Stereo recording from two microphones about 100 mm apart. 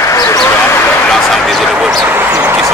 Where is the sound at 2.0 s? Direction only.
20° right (ahead or behind).